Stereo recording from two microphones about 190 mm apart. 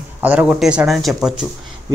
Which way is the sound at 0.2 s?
5° right (ahead or behind).